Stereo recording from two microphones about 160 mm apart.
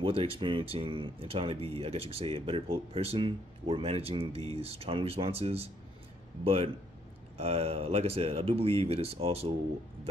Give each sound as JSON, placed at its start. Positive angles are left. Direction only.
{"t": 0.0, "sound": "speech", "side_deg": -35}